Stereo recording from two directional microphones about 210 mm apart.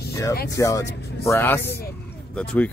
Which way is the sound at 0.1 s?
15° left (ahead or behind).